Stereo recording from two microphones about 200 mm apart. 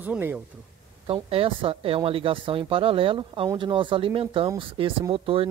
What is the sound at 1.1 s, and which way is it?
Speech, 25° right (ahead or behind).